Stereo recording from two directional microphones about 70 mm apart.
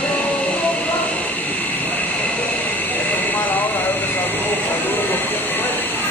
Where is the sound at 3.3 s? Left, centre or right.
Left.